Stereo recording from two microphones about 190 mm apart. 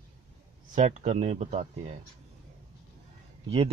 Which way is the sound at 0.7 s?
40° right (ahead or behind).